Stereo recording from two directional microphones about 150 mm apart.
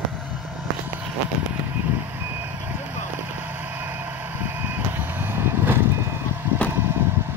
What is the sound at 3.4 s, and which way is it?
Vehicle, 15° right (ahead or behind).